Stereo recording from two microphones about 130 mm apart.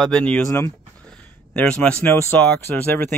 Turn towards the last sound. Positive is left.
turn(degrees=15)  # may be behind; listen again after turning